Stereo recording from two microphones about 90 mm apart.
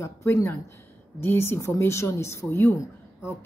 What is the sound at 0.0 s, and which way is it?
A woman's voice, 30° left (ahead or behind).